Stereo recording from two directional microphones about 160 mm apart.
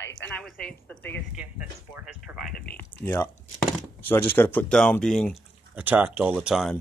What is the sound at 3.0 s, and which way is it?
Speech, 10° left (ahead or behind).